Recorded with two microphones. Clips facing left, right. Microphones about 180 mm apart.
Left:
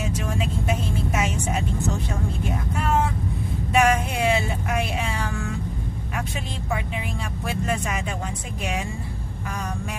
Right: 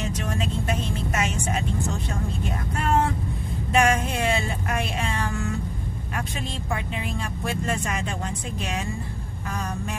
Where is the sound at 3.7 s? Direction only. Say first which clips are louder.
Left 1 dB; 5° left (ahead or behind).